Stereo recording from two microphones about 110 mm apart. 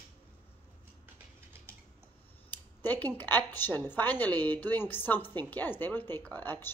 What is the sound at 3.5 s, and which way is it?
A woman's voice, 20° left (ahead or behind).